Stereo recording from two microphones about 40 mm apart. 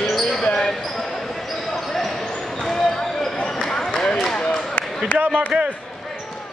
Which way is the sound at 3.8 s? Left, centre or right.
Left.